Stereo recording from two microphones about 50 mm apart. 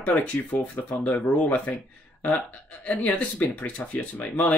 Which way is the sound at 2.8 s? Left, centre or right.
Left.